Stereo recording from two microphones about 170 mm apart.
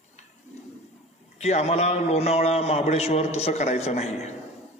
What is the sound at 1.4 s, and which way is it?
A man's voice, 40° left (ahead or behind).